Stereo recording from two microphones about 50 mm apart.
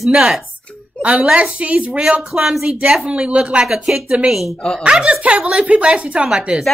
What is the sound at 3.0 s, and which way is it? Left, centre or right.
Speech, right.